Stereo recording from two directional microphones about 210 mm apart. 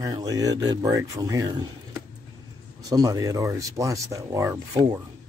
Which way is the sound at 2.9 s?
15° right (ahead or behind).